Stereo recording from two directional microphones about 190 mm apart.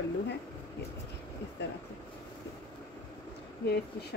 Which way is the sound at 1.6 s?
65° left (ahead or behind).